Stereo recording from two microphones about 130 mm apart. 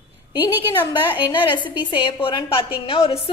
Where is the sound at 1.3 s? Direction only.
40° left (ahead or behind).